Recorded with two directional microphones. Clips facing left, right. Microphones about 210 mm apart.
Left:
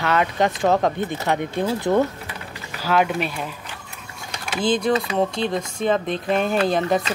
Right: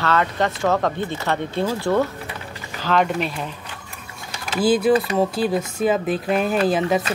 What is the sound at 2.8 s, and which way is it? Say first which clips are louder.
Speech: even; 5° left (ahead or behind).